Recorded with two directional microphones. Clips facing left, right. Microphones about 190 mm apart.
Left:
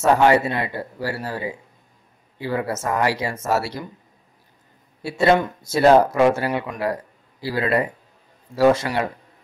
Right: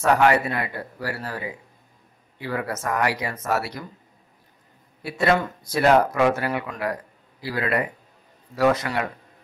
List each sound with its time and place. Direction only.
0.0 s speech: 25° left (ahead or behind)
5.0 s speech: 25° left (ahead or behind)